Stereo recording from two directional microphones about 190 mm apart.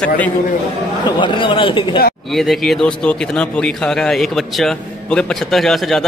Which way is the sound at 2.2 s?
Centre (ahead or behind).